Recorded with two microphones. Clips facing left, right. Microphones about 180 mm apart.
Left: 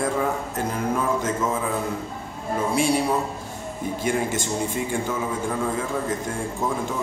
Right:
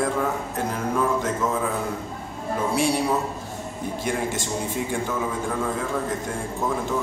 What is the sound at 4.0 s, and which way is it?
Speech, centre (ahead or behind).